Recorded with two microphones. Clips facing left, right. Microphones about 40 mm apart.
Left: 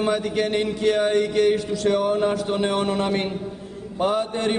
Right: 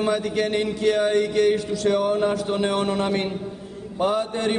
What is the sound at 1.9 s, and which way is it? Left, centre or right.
Speech, centre.